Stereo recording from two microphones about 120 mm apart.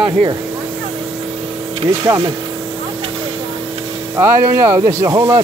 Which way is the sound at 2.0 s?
35° right (ahead or behind).